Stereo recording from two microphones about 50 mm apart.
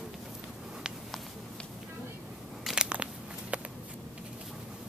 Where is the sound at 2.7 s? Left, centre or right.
Right.